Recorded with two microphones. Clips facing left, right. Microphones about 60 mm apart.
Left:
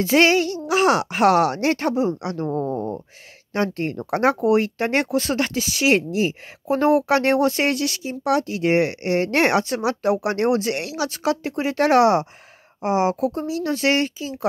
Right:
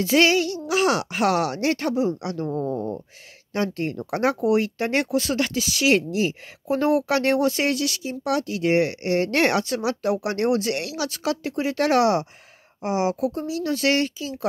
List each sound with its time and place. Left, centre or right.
0.0 s speech: left